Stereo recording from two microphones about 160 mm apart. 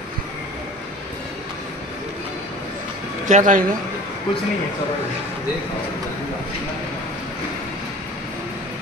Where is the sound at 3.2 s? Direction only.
50° right (ahead or behind).